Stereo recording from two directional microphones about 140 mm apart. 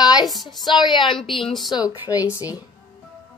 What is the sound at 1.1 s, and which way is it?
Speech, centre (ahead or behind).